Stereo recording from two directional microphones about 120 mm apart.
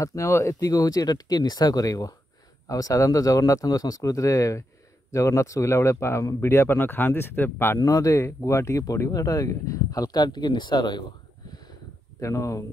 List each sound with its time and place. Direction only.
0.0 s speech: 25° left (ahead or behind)
7.8 s speech: 30° left (ahead or behind)
12.2 s speech: 25° left (ahead or behind)